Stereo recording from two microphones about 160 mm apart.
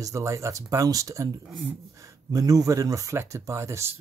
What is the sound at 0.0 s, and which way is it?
Speech, 20° right (ahead or behind).